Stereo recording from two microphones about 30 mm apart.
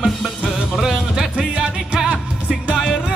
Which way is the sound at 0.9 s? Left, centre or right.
Centre.